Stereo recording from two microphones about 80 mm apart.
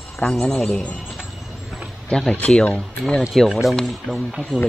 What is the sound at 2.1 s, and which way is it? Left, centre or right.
Speech, centre.